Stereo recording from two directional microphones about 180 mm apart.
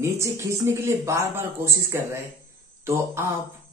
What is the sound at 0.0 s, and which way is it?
A man's voice, 15° right (ahead or behind).